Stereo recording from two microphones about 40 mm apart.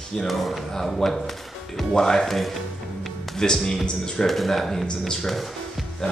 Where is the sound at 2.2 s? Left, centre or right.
Centre.